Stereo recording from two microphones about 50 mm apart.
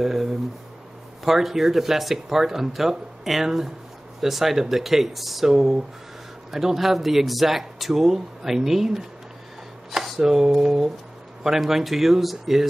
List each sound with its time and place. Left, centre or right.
0.0 s speech: centre